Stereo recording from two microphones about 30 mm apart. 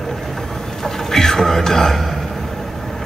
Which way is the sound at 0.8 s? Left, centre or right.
Centre.